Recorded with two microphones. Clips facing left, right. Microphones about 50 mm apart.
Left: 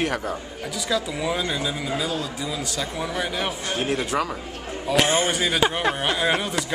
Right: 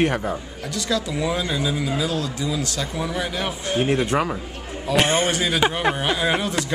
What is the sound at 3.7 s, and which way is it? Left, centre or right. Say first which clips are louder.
Speech: right 5 dB; right.